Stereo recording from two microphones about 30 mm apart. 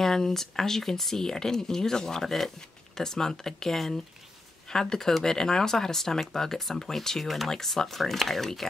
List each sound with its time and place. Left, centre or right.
0.0 s speech: centre